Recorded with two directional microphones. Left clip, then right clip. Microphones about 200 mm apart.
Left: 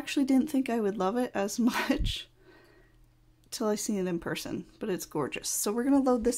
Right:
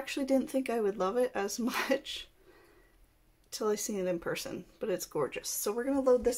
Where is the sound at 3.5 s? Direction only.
35° left (ahead or behind).